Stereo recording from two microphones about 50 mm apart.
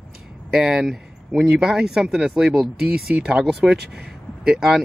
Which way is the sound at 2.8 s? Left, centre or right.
Right.